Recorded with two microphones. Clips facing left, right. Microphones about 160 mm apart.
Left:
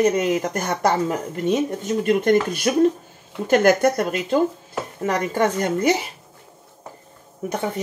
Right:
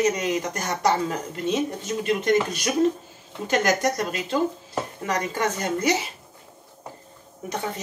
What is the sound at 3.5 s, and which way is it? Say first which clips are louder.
A woman's voice: left 6 dB; 55° left (ahead or behind).